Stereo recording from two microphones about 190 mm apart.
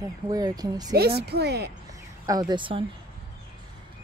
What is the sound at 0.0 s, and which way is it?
Speech, 20° right (ahead or behind).